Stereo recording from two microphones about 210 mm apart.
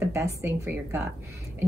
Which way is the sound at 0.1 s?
15° right (ahead or behind).